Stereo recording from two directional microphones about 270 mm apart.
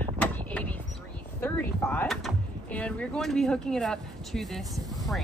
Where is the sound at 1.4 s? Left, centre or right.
Centre.